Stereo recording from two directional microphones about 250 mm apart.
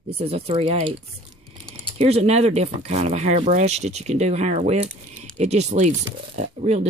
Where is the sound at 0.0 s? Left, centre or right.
Right.